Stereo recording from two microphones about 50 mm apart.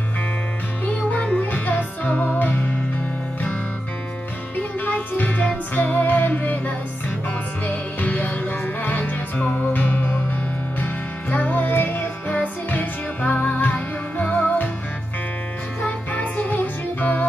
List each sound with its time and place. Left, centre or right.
1.1 s music: left
1.4 s music: left
4.6 s music: left
15.8 s music: left